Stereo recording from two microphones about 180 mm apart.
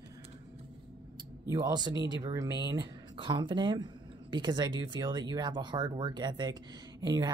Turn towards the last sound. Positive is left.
turn(degrees=-20)  # may be behind; listen again after turning